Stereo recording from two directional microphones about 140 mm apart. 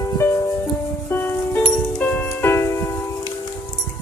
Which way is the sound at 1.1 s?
15° left (ahead or behind).